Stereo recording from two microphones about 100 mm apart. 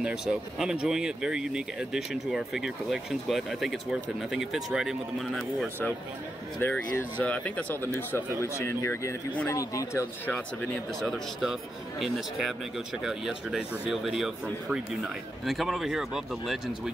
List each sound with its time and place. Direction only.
0.0 s speech: 5° right (ahead or behind)
6.6 s speech: 15° left (ahead or behind)
10.2 s speech: 10° left (ahead or behind)
12.0 s speech: centre (ahead or behind)